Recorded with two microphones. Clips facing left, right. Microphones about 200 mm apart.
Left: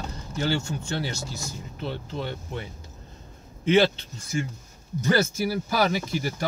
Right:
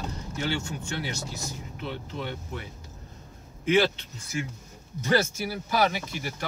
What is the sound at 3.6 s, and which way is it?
Speech, 25° left (ahead or behind).